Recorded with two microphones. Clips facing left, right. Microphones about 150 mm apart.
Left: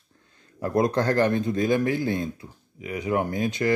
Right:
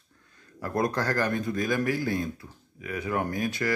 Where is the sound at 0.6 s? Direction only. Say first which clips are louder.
Left 5 dB; 20° left (ahead or behind).